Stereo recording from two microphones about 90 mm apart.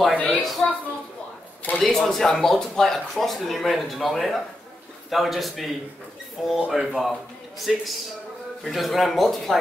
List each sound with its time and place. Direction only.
0.1 s a woman's voice: 15° left (ahead or behind)
0.4 s speech: 5° left (ahead or behind)
1.8 s speech: 5° left (ahead or behind)